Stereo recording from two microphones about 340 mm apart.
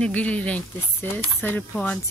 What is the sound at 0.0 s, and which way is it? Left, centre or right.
Speech, centre.